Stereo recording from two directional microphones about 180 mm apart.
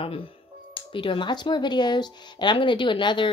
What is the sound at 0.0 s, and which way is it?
A woman's voice, 30° left (ahead or behind).